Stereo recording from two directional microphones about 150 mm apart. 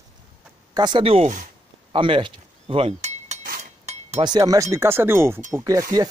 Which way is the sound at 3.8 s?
45° right (ahead or behind).